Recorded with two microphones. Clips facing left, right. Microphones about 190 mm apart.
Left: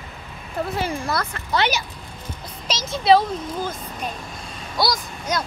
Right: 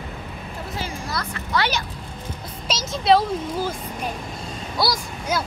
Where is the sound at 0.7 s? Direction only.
60° left (ahead or behind).